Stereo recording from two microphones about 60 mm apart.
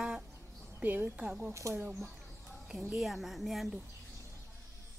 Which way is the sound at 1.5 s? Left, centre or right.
Right.